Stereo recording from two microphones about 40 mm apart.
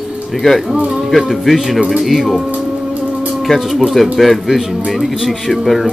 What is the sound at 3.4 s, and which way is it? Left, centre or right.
Speech, centre.